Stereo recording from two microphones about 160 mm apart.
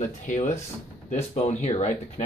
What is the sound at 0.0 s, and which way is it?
Speech, 50° left (ahead or behind).